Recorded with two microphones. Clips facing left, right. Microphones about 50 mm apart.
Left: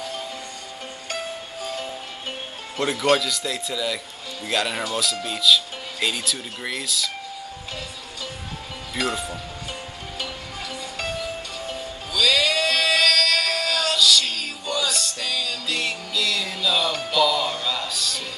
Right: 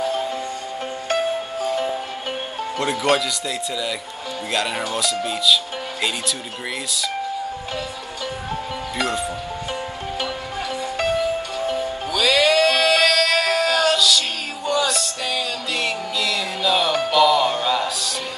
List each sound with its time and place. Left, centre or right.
1.6 s music: right
2.8 s speech: centre
8.9 s speech: centre
11.0 s music: right
13.9 s music: centre
15.2 s music: right
15.7 s music: centre
16.8 s music: right
17.8 s music: centre